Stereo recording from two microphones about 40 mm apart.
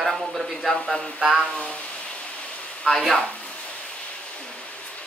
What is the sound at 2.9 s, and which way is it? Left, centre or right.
Speech, centre.